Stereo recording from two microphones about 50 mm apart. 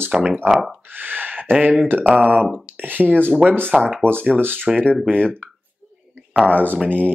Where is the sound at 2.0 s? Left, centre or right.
Right.